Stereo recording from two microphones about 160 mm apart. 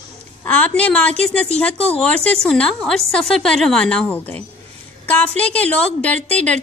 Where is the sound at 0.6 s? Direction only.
5° left (ahead or behind).